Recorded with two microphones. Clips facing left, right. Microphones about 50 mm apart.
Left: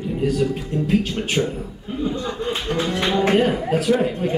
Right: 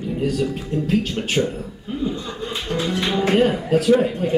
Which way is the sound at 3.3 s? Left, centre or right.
Centre.